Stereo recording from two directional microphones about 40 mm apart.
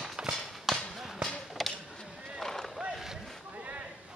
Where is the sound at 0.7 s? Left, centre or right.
Centre.